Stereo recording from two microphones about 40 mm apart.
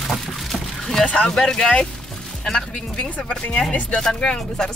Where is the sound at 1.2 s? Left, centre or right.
Centre.